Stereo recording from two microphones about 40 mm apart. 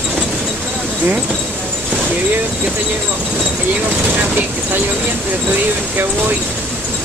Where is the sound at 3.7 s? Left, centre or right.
Right.